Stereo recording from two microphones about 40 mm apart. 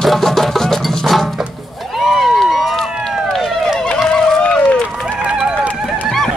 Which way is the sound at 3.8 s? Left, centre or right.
Left.